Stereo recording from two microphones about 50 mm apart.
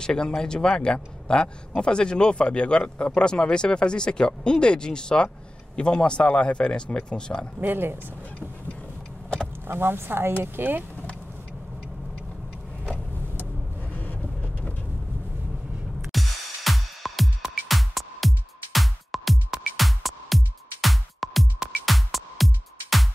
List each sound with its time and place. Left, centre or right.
0.0 s speech: centre
7.6 s speech: right
9.7 s speech: right
10.6 s speech: right
13.9 s vehicle: left
16.1 s music: centre